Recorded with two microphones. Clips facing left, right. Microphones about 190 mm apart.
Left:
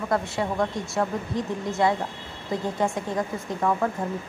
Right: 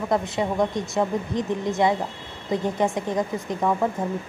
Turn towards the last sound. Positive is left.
turn(degrees=-15)  # may be behind; listen again after turning